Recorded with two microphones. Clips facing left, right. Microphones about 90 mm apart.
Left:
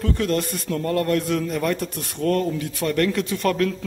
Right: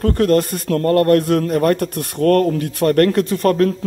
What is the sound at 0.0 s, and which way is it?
A man's voice, 50° right (ahead or behind).